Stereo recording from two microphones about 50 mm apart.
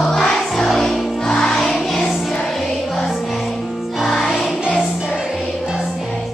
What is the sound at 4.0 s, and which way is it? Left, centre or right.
Music, centre.